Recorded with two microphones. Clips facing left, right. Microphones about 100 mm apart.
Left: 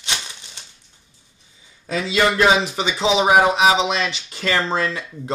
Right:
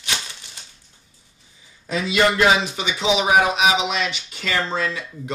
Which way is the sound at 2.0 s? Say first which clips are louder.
Even; 25° left (ahead or behind).